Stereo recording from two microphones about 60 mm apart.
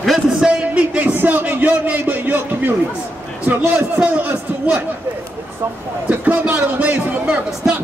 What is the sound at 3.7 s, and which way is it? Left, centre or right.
Speech, right.